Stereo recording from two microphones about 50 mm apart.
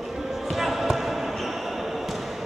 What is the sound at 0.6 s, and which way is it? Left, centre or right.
Basketball bounce, centre.